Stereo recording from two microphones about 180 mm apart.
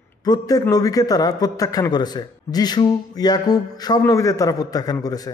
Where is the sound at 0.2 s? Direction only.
20° left (ahead or behind).